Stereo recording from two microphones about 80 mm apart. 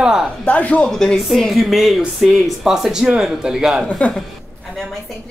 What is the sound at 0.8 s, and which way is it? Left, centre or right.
Speech, centre.